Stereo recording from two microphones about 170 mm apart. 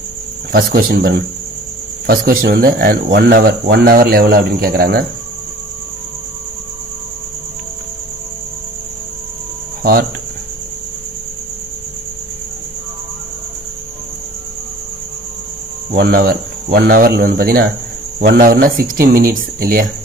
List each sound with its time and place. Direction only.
0.5 s speech: 60° right (ahead or behind)
15.9 s speech: 65° right (ahead or behind)